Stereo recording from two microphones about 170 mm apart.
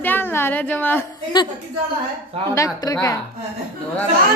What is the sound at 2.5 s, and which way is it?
Speech, 15° left (ahead or behind).